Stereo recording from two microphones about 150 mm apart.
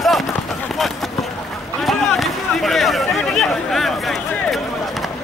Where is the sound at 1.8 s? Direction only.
Centre (ahead or behind).